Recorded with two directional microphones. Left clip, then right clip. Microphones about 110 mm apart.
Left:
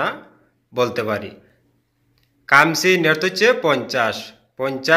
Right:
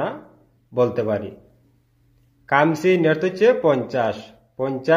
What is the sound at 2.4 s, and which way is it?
Speech, 30° right (ahead or behind).